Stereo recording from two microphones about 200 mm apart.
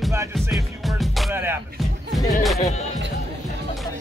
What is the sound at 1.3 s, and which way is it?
Music, 10° right (ahead or behind).